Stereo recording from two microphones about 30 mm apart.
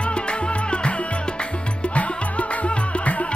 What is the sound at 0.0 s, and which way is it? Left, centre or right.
Music, left.